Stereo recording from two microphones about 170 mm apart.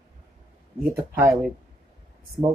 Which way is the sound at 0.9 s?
15° right (ahead or behind).